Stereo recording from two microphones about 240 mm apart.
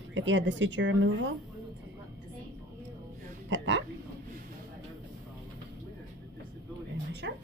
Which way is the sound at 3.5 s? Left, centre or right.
Right.